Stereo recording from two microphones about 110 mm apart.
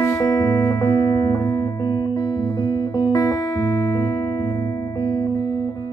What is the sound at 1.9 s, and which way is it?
Music, 45° left (ahead or behind).